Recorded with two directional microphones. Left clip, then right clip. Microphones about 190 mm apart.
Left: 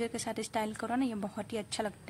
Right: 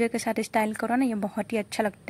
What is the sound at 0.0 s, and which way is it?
A woman's voice, 35° right (ahead or behind).